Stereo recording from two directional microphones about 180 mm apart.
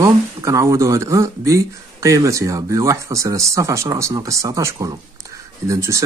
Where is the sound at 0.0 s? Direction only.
15° right (ahead or behind).